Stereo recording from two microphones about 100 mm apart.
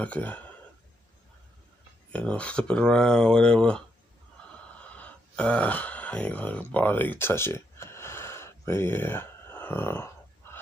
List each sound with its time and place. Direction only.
0.0 s speech: 15° left (ahead or behind)
2.1 s speech: 10° left (ahead or behind)
4.5 s a sound: 15° left (ahead or behind)